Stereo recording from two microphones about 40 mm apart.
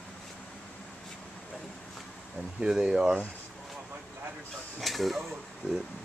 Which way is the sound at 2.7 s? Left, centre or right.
Centre.